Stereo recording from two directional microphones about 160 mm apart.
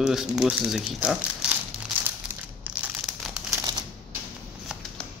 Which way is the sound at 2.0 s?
10° right (ahead or behind).